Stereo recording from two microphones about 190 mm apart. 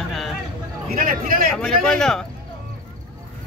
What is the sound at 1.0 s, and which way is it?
Speech, 50° right (ahead or behind).